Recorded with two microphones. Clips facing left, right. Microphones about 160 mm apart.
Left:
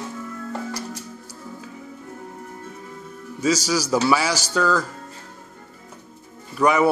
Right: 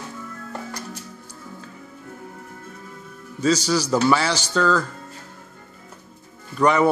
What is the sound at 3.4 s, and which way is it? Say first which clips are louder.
A man's voice: right 1 dB; 10° left (ahead or behind).